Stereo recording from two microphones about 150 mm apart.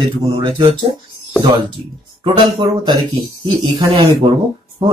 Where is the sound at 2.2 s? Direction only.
35° right (ahead or behind).